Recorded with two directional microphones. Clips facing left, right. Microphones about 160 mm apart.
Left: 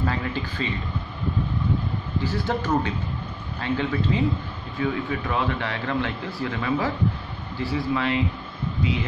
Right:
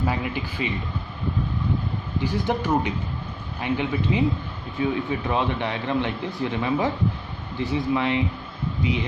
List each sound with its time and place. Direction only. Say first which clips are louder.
0.0 s speech: right 1 dB; 15° right (ahead or behind)
2.2 s speech: right 2 dB; 15° right (ahead or behind)